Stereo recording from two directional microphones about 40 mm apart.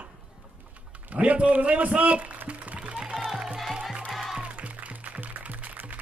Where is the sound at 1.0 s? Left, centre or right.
Right.